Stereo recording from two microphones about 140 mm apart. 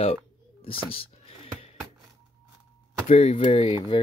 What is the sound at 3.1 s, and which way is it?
Speech, 45° left (ahead or behind).